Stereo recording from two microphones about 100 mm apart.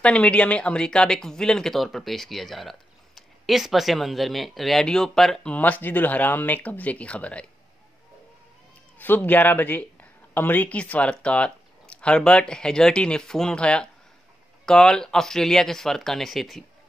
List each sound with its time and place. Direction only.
0.0 s speech: 10° left (ahead or behind)
5.5 s speech: 15° left (ahead or behind)
8.9 s speech: 20° left (ahead or behind); by 16.6 s centre (ahead or behind)